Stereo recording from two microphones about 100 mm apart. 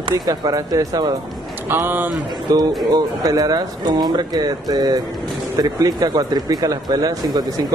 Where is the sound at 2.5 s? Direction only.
40° right (ahead or behind).